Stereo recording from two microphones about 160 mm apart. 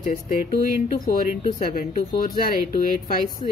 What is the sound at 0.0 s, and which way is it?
A woman's voice, 50° left (ahead or behind).